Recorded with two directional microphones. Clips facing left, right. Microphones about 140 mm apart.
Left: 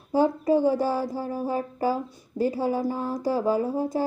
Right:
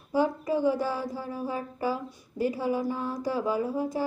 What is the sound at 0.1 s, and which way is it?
Speech, 35° left (ahead or behind).